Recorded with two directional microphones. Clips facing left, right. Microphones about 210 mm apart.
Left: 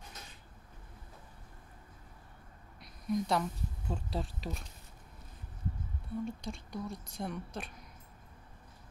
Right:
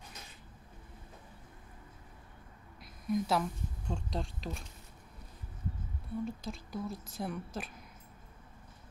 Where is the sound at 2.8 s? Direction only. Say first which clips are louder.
Right 1 dB; centre (ahead or behind).